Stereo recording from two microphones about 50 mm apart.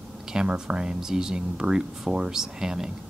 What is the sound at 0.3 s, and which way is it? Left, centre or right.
Speech, centre.